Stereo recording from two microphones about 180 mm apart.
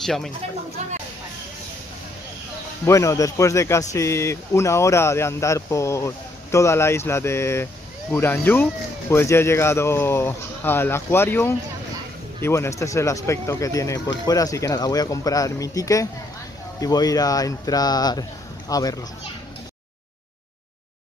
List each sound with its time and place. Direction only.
0.0 s speech: centre (ahead or behind)
2.8 s speech: 15° left (ahead or behind)